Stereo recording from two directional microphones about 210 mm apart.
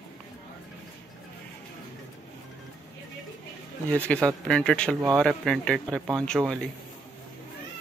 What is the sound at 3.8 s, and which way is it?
Speech, 5° left (ahead or behind).